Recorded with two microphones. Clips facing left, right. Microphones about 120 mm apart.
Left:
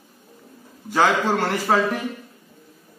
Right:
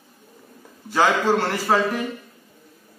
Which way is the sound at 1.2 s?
10° left (ahead or behind).